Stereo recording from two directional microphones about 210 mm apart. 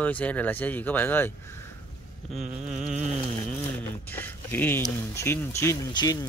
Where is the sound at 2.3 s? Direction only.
35° right (ahead or behind).